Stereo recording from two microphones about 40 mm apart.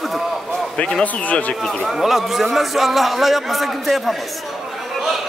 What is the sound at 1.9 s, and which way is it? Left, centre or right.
A man's voice, centre.